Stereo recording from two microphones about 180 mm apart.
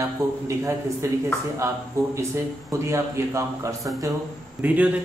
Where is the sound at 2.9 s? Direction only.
15° right (ahead or behind).